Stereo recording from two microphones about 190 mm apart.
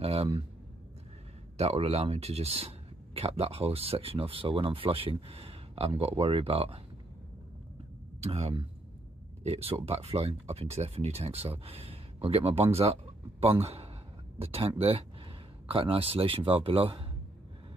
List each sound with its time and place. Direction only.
0.0 s speech: 30° right (ahead or behind)
1.6 s speech: 30° right (ahead or behind)
8.2 s a man's voice: 30° right (ahead or behind)